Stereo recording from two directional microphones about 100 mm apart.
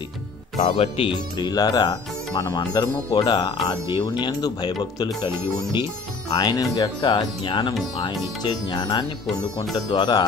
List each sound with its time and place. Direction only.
0.6 s speech: 70° left (ahead or behind)
1.4 s speech: 40° left (ahead or behind)
3.1 s speech: 60° left (ahead or behind)
3.6 s speech: 45° left (ahead or behind)
6.3 s speech: 45° left (ahead or behind)